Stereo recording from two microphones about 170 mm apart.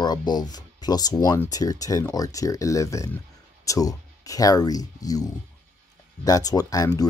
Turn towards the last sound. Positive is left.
turn(degrees=20)  # may be behind; listen again after turning